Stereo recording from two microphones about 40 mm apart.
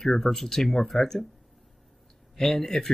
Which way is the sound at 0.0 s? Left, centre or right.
Centre.